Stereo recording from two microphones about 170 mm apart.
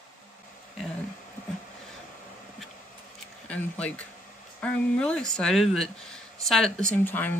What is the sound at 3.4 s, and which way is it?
Speech, 10° left (ahead or behind).